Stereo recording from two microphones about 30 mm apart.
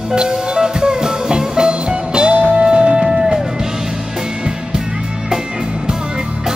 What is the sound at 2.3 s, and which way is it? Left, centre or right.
Music, right.